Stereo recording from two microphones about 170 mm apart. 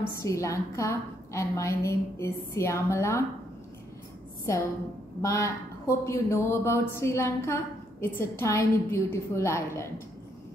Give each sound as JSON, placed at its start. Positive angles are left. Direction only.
{"t": 0.2, "sound": "speech", "side_deg": 20}
{"t": 5.2, "sound": "speech", "side_deg": 20}